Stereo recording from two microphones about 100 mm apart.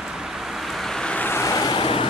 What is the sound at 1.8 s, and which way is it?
Vehicle, 65° left (ahead or behind).